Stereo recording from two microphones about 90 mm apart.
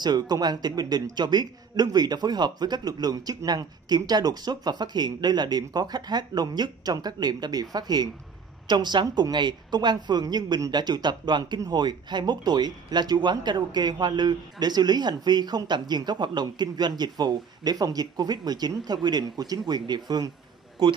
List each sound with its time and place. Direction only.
0.0 s a woman's voice: 50° right (ahead or behind)